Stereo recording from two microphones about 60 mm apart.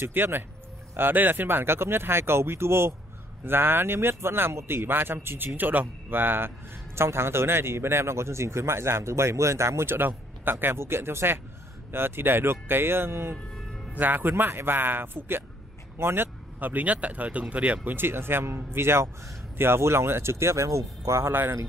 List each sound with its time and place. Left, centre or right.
0.1 s speech: right
16.5 s speech: right
17.8 s speech: right
21.3 s speech: right